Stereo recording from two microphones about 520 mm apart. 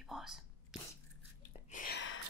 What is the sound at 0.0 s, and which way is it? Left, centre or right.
Whispering, centre.